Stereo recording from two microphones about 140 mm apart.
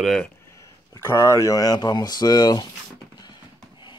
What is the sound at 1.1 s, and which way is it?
Speech, 20° left (ahead or behind).